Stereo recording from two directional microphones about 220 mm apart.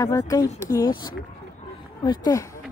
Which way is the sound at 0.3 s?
15° left (ahead or behind).